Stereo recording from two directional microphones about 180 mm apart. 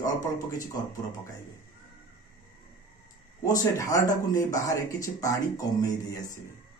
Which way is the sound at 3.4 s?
20° left (ahead or behind).